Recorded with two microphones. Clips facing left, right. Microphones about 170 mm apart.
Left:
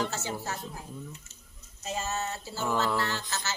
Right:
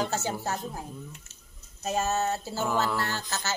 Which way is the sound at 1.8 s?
50° right (ahead or behind).